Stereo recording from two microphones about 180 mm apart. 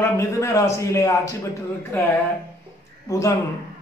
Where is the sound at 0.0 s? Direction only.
15° left (ahead or behind).